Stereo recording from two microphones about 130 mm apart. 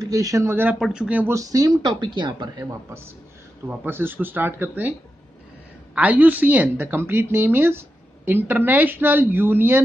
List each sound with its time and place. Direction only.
0.0 s speech: 30° right (ahead or behind)
0.7 s a woman's voice: 5° right (ahead or behind)
1.3 s speech: 25° right (ahead or behind)
3.6 s a woman's voice: 15° right (ahead or behind)
5.9 s a woman's voice: 10° right (ahead or behind)